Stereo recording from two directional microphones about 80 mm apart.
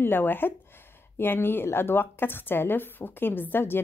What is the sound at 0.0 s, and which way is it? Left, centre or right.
A woman's voice, left.